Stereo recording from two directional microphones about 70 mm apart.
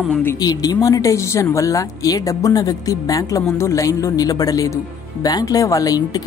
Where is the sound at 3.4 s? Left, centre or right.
Left.